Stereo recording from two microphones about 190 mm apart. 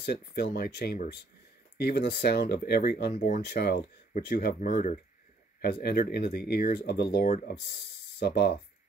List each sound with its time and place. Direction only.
0.0 s speech: 55° left (ahead or behind)
3.5 s speech: 55° left (ahead or behind)
5.6 s speech: 55° left (ahead or behind)